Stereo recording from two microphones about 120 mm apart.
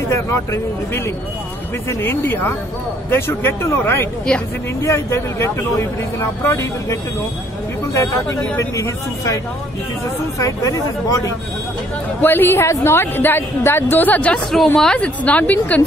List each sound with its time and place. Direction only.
0.1 s speech: 25° left (ahead or behind)
10.4 s speech: 30° left (ahead or behind)
12.2 s a woman's voice: 15° left (ahead or behind)